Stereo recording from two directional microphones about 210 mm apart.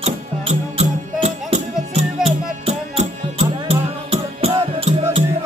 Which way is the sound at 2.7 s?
30° right (ahead or behind).